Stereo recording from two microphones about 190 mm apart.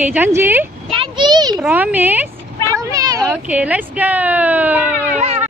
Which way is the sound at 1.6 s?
10° right (ahead or behind).